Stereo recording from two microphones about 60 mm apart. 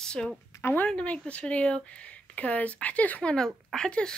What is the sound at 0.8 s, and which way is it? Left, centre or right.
Speech, centre.